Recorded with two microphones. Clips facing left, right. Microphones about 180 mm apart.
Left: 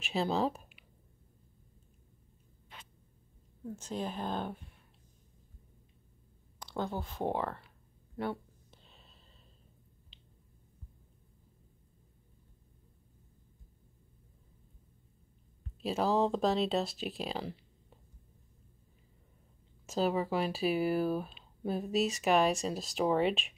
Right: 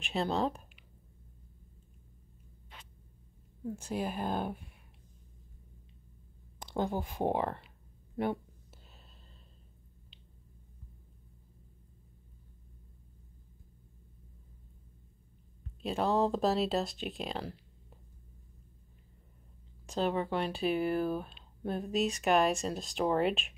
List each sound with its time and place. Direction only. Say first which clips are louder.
0.0 s speech: even; centre (ahead or behind)
3.6 s speech: right 2 dB; 10° right (ahead or behind)
6.6 s speech: right 3 dB; 20° right (ahead or behind)
15.8 s speech: even; centre (ahead or behind)
19.9 s speech: left 1 dB; 5° left (ahead or behind)